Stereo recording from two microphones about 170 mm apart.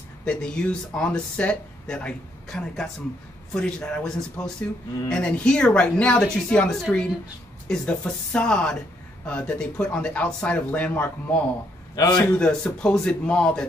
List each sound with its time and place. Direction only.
0.2 s speech: 5° left (ahead or behind)
11.9 s a man's voice: 25° left (ahead or behind)
12.4 s speech: 5° left (ahead or behind)